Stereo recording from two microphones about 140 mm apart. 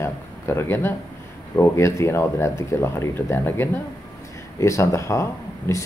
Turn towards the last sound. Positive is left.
turn(degrees=20)  # may be behind; listen again after turning